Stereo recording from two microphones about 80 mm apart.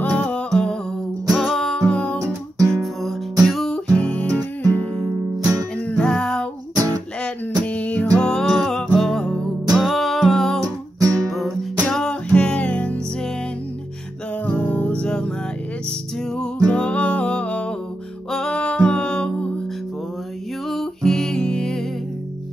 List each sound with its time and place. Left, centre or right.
0.0 s humming: centre
1.3 s music: centre
1.6 s music: centre
2.1 s music: right
2.7 s music: centre
5.4 s music: right
5.8 s music: centre
7.6 s music: centre
9.7 s music: centre
14.4 s music: centre
16.3 s music: centre
20.7 s music: centre